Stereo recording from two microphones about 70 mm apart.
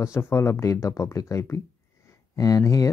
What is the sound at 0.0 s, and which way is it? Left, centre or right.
Speech, left.